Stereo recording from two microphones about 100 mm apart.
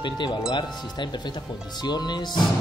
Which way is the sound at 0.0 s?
45° left (ahead or behind).